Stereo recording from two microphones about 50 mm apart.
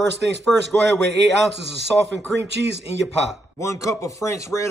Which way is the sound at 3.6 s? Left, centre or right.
Left.